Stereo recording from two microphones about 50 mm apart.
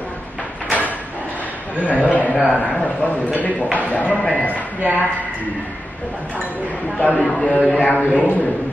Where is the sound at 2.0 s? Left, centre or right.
Left.